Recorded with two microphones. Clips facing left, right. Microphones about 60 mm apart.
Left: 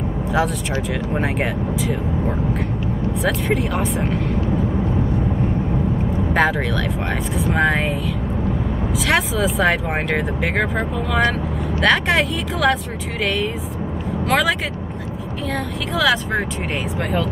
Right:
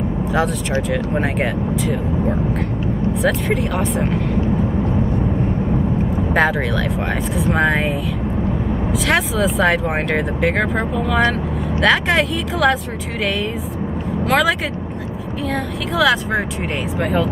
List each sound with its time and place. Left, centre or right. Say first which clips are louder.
0.3 s speech: right 1 dB; centre
3.2 s speech: right 1 dB; centre
6.3 s speech: right 1 dB; centre
9.0 s speech: right 1 dB; centre
14.2 s speech: right 2 dB; centre
16.0 s speech: right 2 dB; centre